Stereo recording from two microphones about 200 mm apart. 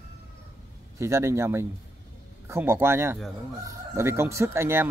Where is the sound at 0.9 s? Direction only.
15° right (ahead or behind).